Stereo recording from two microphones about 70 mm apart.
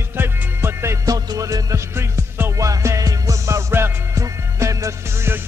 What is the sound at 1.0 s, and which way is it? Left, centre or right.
Music, right.